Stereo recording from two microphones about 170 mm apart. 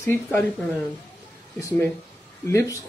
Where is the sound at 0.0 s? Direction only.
15° left (ahead or behind).